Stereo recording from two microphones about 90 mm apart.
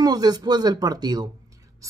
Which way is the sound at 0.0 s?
45° right (ahead or behind).